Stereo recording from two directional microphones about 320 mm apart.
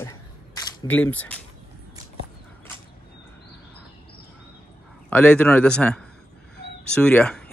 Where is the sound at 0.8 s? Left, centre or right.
Centre.